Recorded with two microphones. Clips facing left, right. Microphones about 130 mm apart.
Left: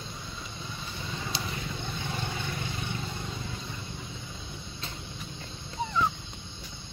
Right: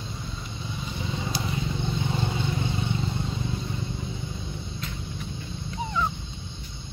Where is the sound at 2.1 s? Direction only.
20° right (ahead or behind).